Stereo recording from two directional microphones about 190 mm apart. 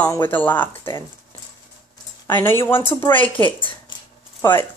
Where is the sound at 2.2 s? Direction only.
10° left (ahead or behind).